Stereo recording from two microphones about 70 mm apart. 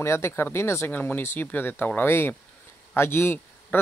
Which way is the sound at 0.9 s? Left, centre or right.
Left.